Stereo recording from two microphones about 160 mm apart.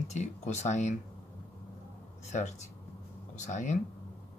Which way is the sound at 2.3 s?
45° left (ahead or behind).